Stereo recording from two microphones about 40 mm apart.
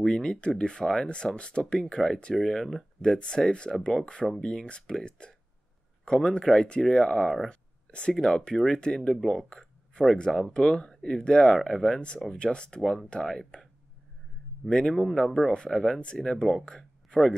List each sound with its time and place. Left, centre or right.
0.0 s speech: centre
3.0 s speech: left
7.4 s a sound: left
8.1 s speech: centre
9.5 s a sound: centre
10.1 s speech: centre
14.7 s speech: centre
15.5 s speech: centre
16.6 s a sound: left